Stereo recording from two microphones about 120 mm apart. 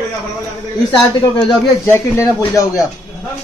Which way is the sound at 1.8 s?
20° left (ahead or behind).